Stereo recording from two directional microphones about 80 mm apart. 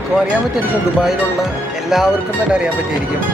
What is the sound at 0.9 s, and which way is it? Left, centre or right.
Speech, centre.